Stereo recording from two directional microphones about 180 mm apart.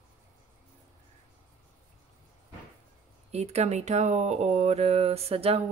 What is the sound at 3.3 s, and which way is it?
Speech, 35° right (ahead or behind).